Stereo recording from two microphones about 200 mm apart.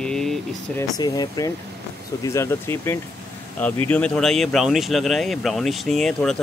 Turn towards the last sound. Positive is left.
turn(degrees=5)  # may be behind; listen again after turning